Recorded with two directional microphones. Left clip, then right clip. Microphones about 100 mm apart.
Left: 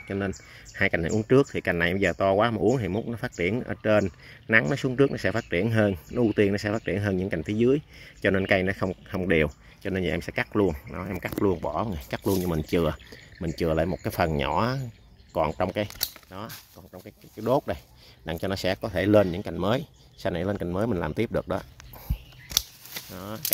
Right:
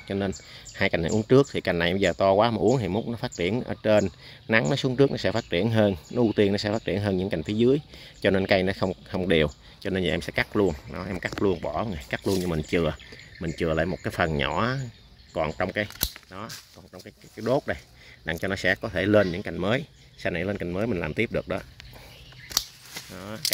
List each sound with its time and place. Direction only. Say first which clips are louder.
0.7 s speech: even; 15° right (ahead or behind)
2.9 s speech: right 1 dB; 5° left (ahead or behind)
3.3 s speech: even; 5° right (ahead or behind)
6.5 s speech: right 1 dB; 10° left (ahead or behind)
7.2 s speech: right 1 dB; 10° right (ahead or behind)
8.6 s speech: right 1 dB; 5° left (ahead or behind)
9.2 s speech: right 1 dB; 5° right (ahead or behind)
11.4 s speech: even; 20° left (ahead or behind)
12.2 s speech: left 1 dB; 5° left (ahead or behind)
12.4 s speech: even; 25° left (ahead or behind)
23.1 s speech: left 1 dB; 25° left (ahead or behind)